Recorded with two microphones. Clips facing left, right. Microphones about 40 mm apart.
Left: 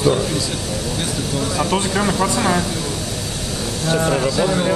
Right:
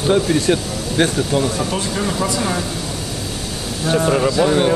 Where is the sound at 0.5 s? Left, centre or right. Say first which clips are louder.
Right 5 dB; right.